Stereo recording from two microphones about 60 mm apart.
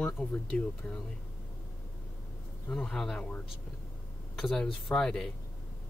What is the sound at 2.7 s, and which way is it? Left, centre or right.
Speech, centre.